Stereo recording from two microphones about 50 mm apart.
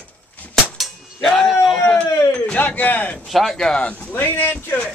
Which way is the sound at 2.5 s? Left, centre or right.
Left.